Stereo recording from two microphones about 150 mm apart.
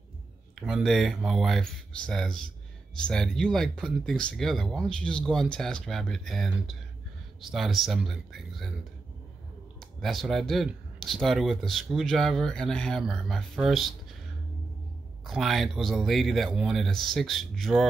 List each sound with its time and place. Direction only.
0.6 s speech: centre (ahead or behind)
9.8 s speech: centre (ahead or behind)
15.2 s speech: centre (ahead or behind)